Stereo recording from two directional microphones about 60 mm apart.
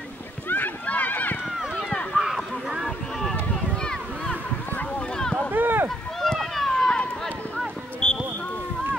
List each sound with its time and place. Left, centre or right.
0.5 s run: left
1.6 s run: centre
3.8 s a sound: centre
5.5 s a sound: right
6.2 s run: centre
7.5 s clip-clop: centre